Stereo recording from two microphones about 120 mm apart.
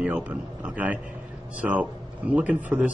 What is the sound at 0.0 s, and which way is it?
Speech, 10° right (ahead or behind).